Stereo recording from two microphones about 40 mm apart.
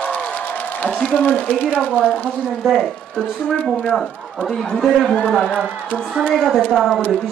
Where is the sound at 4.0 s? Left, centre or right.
Centre.